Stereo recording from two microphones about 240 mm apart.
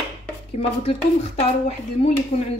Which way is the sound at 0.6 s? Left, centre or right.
Left.